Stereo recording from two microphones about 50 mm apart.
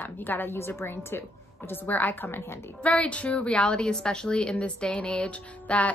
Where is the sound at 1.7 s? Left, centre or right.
Left.